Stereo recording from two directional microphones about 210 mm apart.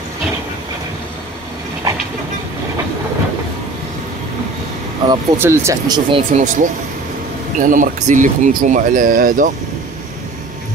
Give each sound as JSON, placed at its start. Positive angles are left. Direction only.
{"t": 5.1, "sound": "speech", "side_deg": -10}